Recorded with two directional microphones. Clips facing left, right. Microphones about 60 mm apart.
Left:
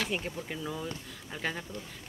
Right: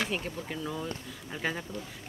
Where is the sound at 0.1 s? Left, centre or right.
Centre.